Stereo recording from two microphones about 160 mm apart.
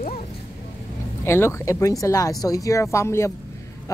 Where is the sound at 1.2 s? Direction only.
15° left (ahead or behind).